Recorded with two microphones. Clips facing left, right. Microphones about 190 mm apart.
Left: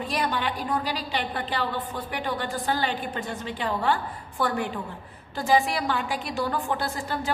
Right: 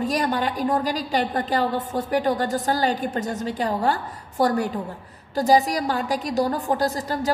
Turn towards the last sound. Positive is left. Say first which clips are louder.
# right 6 dB
turn(degrees=-40)  # may be behind; listen again after turning